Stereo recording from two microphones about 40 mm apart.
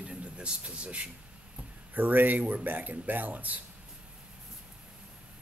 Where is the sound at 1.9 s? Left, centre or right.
Right.